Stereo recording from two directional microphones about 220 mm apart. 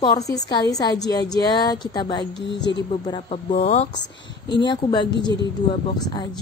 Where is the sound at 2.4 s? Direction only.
55° left (ahead or behind).